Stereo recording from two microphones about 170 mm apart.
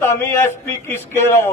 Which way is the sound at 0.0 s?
15° left (ahead or behind).